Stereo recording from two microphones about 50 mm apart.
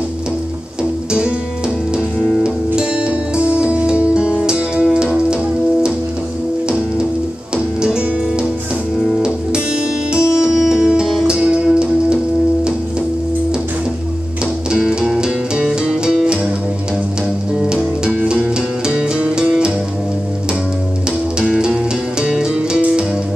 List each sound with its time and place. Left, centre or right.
2.4 s music: centre
7.5 s music: centre
10.1 s music: centre
14.7 s music: centre
17.6 s music: centre
21.5 s music: centre